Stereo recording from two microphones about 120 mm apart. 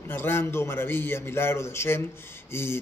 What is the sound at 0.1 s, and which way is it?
Speech, 20° left (ahead or behind).